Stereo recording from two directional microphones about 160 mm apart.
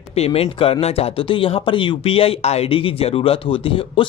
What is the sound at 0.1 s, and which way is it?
Speech, 40° left (ahead or behind).